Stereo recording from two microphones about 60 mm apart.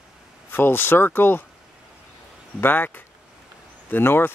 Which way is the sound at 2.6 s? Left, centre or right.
Left.